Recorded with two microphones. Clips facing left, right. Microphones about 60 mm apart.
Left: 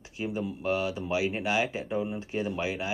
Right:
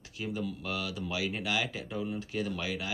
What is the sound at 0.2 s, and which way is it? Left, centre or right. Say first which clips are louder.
Speech: left 4 dB; left.